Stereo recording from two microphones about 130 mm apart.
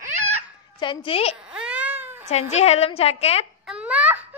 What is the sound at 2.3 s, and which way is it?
A woman's voice, 55° left (ahead or behind).